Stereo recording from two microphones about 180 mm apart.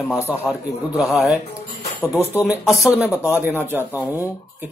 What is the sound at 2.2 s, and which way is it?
Speech, 15° left (ahead or behind).